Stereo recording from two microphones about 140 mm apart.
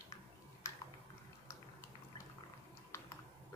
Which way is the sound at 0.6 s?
25° left (ahead or behind).